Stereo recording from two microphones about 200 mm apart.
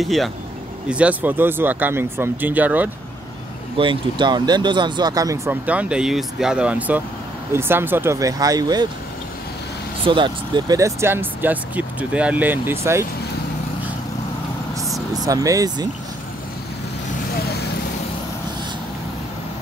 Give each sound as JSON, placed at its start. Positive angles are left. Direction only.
{"t": 0.0, "sound": "speech", "side_deg": 0}
{"t": 3.7, "sound": "speech", "side_deg": -25}
{"t": 10.0, "sound": "speech", "side_deg": -25}
{"t": 14.8, "sound": "vehicle", "side_deg": 0}
{"t": 15.2, "sound": "speech", "side_deg": -15}
{"t": 17.4, "sound": "vehicle", "side_deg": 50}